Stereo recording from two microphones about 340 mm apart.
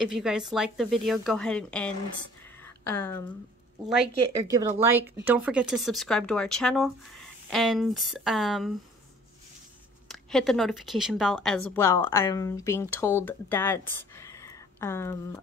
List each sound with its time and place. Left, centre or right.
0.0 s speech: centre
2.6 s a sound: centre
3.8 s speech: centre
10.0 s a woman's voice: centre